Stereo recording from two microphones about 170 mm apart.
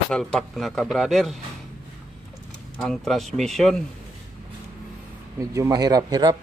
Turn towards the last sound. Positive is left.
turn(degrees=-25)  # may be behind; listen again after turning